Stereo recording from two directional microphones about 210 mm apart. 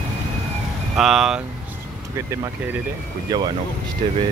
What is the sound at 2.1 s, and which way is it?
Speech, 15° right (ahead or behind).